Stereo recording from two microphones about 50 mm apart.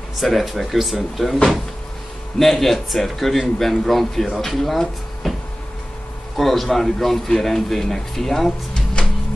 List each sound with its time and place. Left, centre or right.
0.2 s speech: centre
6.3 s speech: centre
9.0 s music: centre